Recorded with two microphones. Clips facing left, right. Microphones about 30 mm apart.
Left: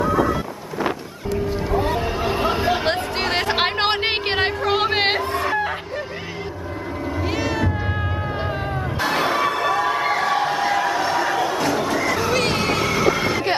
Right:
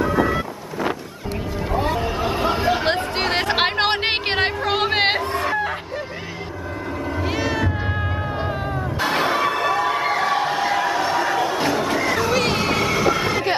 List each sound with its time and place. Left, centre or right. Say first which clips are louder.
0.0 s vehicle: even; centre
2.0 s a sound: even; centre
2.4 s chatter: right 1 dB; centre
7.2 s cat: even; centre
9.0 s crowd: even; centre
11.5 s a sound: even; centre